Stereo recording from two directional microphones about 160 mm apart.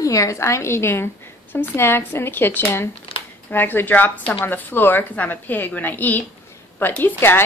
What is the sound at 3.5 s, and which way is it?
A woman's voice, 10° left (ahead or behind).